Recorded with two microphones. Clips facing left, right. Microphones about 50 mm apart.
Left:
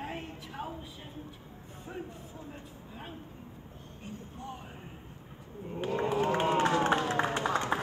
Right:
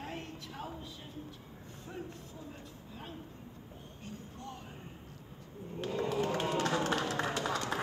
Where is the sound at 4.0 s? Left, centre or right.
Centre.